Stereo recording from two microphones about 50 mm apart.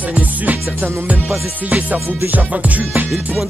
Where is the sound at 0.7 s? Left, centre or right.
Right.